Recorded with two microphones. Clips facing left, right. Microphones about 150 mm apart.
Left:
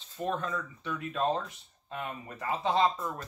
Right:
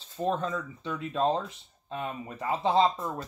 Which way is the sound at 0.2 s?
30° right (ahead or behind).